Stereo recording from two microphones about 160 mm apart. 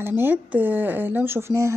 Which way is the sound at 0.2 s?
10° right (ahead or behind).